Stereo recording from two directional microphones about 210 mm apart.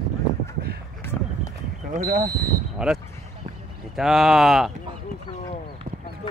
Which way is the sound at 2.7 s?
5° right (ahead or behind).